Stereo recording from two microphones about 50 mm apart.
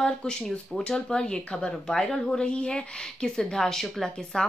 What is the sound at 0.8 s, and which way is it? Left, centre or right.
Speech, centre.